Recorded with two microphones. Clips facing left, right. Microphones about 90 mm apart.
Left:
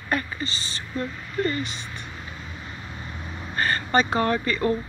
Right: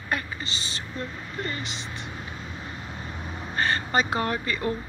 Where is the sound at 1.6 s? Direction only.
90° right.